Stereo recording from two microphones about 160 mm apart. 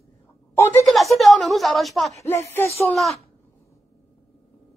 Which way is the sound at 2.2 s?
15° left (ahead or behind).